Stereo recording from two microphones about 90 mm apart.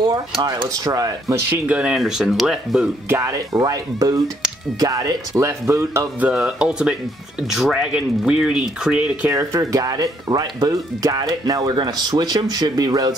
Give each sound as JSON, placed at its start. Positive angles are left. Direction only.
{"t": 0.8, "sound": "speech", "side_deg": -40}
{"t": 1.5, "sound": "speech", "side_deg": -15}
{"t": 3.1, "sound": "speech", "side_deg": -35}
{"t": 6.2, "sound": "speech", "side_deg": -10}
{"t": 9.3, "sound": "speech", "side_deg": -35}